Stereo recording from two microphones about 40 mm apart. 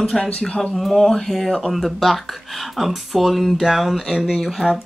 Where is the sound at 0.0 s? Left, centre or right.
Left.